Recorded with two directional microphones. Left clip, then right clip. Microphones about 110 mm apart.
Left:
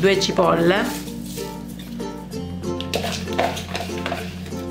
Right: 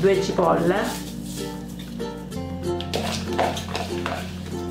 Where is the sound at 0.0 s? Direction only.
60° left (ahead or behind).